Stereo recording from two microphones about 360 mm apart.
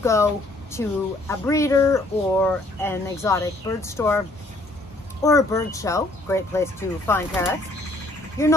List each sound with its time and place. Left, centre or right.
0.0 s speech: centre
5.2 s speech: centre